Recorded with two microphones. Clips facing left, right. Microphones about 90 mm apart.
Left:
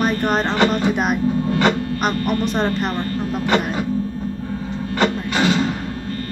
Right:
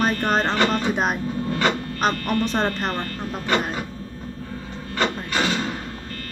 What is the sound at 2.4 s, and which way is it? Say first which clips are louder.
Speech: left 3 dB; 10° left (ahead or behind).